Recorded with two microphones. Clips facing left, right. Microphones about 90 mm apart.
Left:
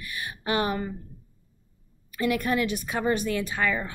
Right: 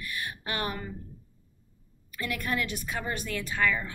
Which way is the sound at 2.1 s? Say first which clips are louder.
Left 7 dB; 15° left (ahead or behind).